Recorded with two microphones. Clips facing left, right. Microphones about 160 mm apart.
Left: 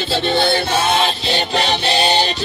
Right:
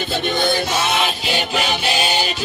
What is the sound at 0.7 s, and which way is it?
Music, 30° left (ahead or behind).